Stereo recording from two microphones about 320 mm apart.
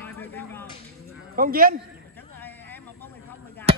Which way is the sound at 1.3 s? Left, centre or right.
Right.